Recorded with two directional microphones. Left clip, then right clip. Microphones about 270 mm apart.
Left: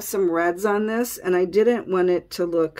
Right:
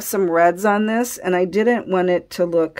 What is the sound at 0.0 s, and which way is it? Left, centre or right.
Speech, right.